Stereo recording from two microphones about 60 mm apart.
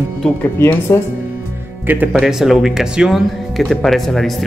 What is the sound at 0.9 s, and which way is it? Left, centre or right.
Speech, left.